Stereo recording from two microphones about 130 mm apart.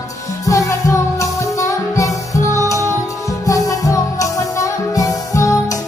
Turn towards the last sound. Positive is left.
turn(degrees=25)  # may be behind; listen again after turning